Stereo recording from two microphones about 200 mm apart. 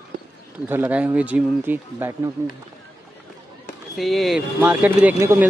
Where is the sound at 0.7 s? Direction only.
10° right (ahead or behind).